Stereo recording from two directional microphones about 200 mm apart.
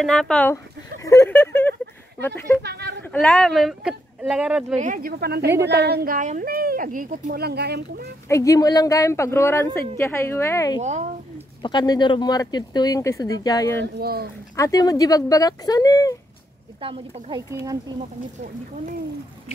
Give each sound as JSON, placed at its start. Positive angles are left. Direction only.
{"t": 0.0, "sound": "speech", "side_deg": 5}
{"t": 2.6, "sound": "speech", "side_deg": -55}
{"t": 3.1, "sound": "speech", "side_deg": 5}
{"t": 4.7, "sound": "speech", "side_deg": -40}
{"t": 8.3, "sound": "speech", "side_deg": 15}
{"t": 10.8, "sound": "a sound", "side_deg": -35}
{"t": 11.6, "sound": "speech", "side_deg": 20}
{"t": 13.9, "sound": "speech", "side_deg": -55}
{"t": 14.5, "sound": "speech", "side_deg": 15}
{"t": 16.8, "sound": "speech", "side_deg": -25}